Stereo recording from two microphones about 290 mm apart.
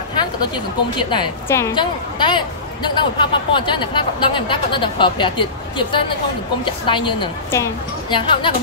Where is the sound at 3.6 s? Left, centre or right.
Centre.